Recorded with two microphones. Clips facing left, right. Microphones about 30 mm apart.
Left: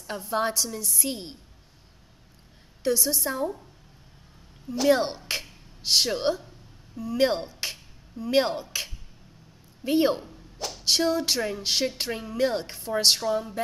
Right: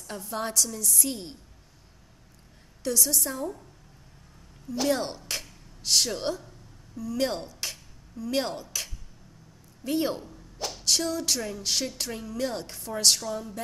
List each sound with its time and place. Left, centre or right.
0.0 s a woman's voice: left
2.8 s a woman's voice: left
4.9 s a woman's voice: left